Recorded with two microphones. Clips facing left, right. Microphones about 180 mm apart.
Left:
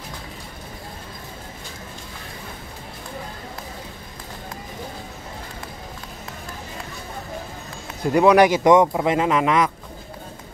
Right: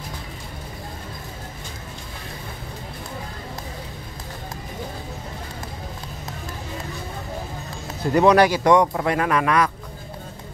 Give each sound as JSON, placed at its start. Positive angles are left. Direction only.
{"t": 8.1, "sound": "speech", "side_deg": 10}
{"t": 8.5, "sound": "speech", "side_deg": 20}